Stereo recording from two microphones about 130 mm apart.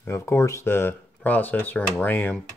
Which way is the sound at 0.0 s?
20° left (ahead or behind).